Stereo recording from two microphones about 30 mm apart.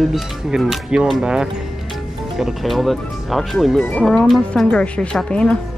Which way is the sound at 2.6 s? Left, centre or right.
Centre.